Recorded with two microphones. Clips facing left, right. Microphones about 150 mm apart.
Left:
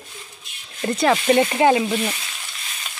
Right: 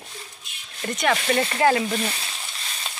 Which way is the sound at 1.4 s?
20° left (ahead or behind).